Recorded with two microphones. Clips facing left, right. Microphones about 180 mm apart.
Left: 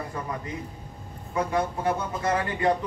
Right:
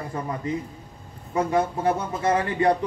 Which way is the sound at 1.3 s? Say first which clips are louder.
Right 3 dB; 25° right (ahead or behind).